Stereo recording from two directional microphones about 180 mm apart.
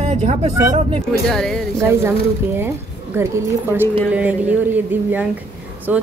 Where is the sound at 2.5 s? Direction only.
15° right (ahead or behind).